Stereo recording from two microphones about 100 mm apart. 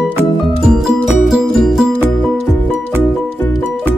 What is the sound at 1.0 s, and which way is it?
Music, centre (ahead or behind).